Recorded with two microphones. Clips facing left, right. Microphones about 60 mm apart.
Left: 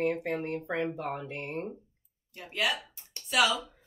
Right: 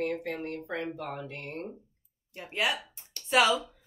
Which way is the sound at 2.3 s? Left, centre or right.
Right.